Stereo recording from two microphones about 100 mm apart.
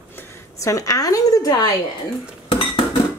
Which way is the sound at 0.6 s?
35° left (ahead or behind).